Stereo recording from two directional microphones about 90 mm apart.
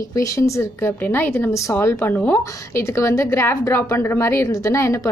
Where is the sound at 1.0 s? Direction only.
20° left (ahead or behind).